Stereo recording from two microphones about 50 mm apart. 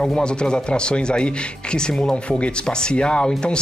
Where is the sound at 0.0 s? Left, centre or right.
Centre.